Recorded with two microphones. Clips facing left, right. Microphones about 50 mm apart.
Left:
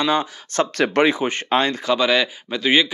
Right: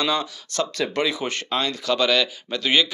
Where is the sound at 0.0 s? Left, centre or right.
Left.